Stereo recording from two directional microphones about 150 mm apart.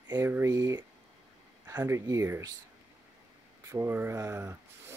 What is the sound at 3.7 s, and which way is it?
Speech, 15° right (ahead or behind).